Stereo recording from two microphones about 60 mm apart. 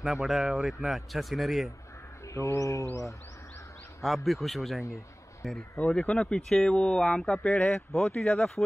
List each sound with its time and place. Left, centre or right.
0.0 s a man's voice: centre
2.3 s mantra: left
4.0 s a man's voice: centre
4.9 s a sound: centre
5.9 s speech: centre